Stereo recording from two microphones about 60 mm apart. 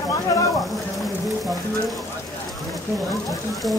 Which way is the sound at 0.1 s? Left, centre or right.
Left.